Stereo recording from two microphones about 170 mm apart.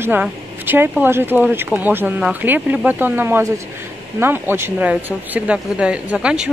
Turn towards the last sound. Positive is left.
turn(degrees=-5)  # may be behind; listen again after turning